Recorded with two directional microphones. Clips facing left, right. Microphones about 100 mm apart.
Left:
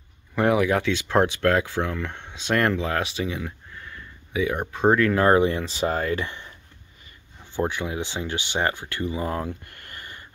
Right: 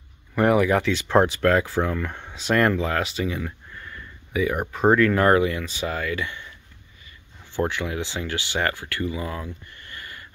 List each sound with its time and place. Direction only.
0.3 s speech: 5° left (ahead or behind)
1.0 s speech: 10° right (ahead or behind); by 4.6 s 15° left (ahead or behind)
4.6 s speech: 10° right (ahead or behind)
4.9 s speech: 5° left (ahead or behind)
5.3 s speech: 30° left (ahead or behind)
7.5 s speech: 15° left (ahead or behind)
9.2 s speech: 40° left (ahead or behind)
9.8 s a sound: 30° left (ahead or behind)